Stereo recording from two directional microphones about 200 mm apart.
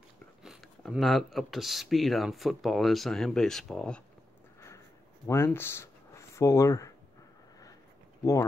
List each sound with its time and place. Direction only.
0.4 s speech: centre (ahead or behind)
4.6 s a sound: 15° left (ahead or behind)
8.2 s speech: 15° left (ahead or behind)